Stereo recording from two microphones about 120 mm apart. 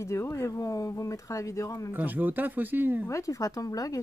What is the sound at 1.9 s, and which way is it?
Speech, 15° right (ahead or behind).